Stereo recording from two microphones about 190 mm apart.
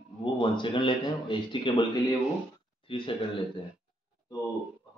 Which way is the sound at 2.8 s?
25° left (ahead or behind).